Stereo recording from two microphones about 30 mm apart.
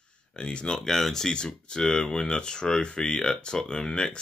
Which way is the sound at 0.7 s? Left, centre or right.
Centre.